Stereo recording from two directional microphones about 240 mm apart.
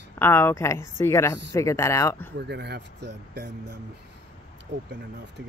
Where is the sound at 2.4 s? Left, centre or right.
Right.